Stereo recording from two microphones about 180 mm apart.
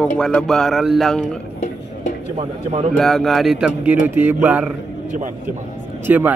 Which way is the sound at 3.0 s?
Centre (ahead or behind).